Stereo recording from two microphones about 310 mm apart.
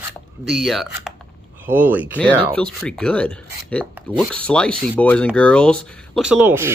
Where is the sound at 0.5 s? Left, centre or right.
Centre.